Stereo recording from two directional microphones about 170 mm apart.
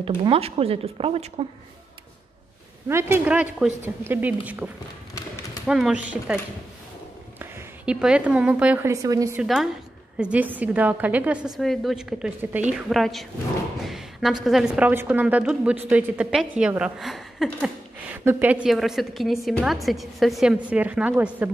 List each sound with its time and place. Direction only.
0.0 s speech: 30° right (ahead or behind)
2.9 s a woman's voice: 15° right (ahead or behind)
5.7 s a woman's voice: centre (ahead or behind)
7.3 s a woman's voice: 10° right (ahead or behind)
9.4 s a woman's voice: 5° right (ahead or behind)
18.1 s a woman's voice: 10° right (ahead or behind)